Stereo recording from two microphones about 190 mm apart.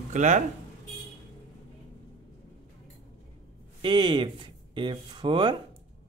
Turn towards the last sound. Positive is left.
turn(degrees=-25)  # may be behind; listen again after turning